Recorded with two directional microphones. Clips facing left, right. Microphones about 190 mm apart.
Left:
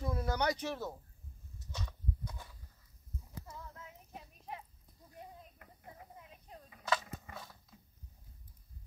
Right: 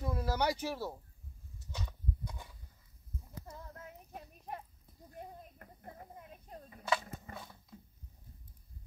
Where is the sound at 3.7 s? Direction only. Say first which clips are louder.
Right 3 dB; 50° right (ahead or behind).